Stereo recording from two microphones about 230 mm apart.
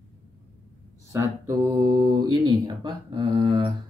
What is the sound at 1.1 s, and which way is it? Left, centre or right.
Speech, centre.